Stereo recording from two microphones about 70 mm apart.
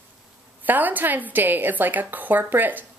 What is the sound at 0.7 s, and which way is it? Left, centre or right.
A woman's voice, right.